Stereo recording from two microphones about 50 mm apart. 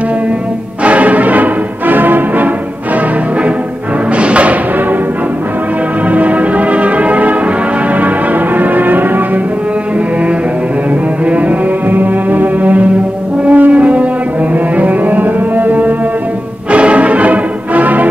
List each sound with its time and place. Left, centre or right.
0.8 s music: right
4.2 s music: right
6.0 s music: right
8.5 s music: right
11.2 s music: right
13.5 s french horn: right
14.8 s music: right
16.7 s music: right